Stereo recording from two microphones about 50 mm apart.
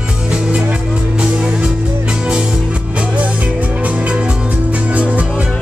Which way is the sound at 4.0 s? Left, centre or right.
Centre.